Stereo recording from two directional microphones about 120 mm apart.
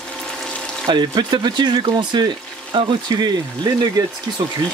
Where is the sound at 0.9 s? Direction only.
40° right (ahead or behind).